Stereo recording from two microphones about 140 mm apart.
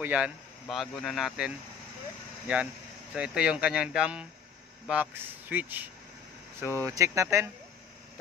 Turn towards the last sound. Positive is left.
turn(degrees=-20)  # may be behind; listen again after turning